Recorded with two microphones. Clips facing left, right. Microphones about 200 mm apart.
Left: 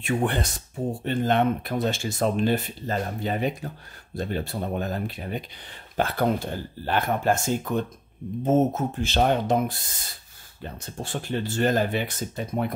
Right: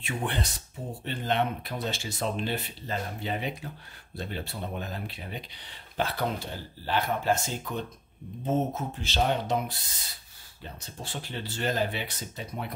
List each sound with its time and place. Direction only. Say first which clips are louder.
0.0 s speech: left 7 dB; 50° left (ahead or behind)